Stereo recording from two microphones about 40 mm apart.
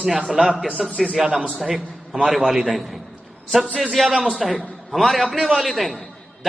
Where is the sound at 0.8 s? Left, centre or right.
Left.